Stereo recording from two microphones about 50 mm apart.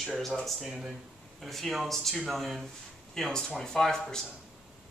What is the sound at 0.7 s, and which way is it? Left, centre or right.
Speech, centre.